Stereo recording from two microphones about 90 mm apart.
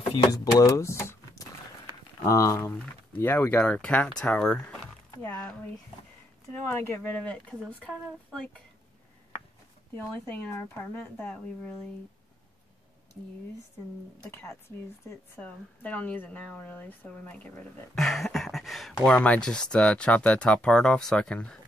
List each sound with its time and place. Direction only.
0.3 s speech: 40° left (ahead or behind)
1.9 s a sound: 40° left (ahead or behind)
3.2 s speech: 20° left (ahead or behind)
6.6 s speech: 25° left (ahead or behind)
9.9 s speech: 25° left (ahead or behind)
14.3 s speech: 25° left (ahead or behind)
15.3 s speech: 15° left (ahead or behind)
17.9 s a sound: centre (ahead or behind)
19.0 s speech: 15° left (ahead or behind)